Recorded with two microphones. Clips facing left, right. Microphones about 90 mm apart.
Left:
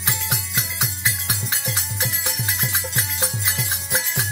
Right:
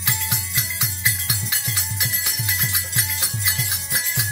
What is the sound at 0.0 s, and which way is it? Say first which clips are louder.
Music: left 1 dB; 35° left (ahead or behind).